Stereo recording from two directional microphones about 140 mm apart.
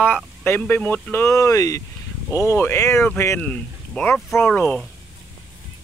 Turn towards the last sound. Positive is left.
turn(degrees=10)  # may be behind; listen again after turning